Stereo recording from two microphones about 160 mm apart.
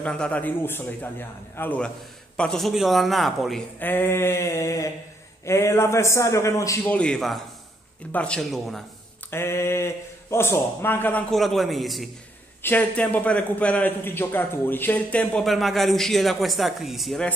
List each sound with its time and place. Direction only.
0.0 s a man's voice: 5° left (ahead or behind)
3.8 s a man's voice: 10° left (ahead or behind)
6.9 s a man's voice: 5° left (ahead or behind)
9.3 s a man's voice: 15° left (ahead or behind); by 17.3 s centre (ahead or behind)